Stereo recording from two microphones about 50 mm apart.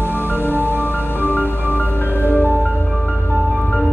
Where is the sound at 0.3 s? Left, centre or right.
Left.